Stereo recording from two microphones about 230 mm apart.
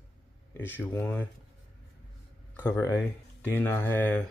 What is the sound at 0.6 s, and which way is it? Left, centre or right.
Speech, centre.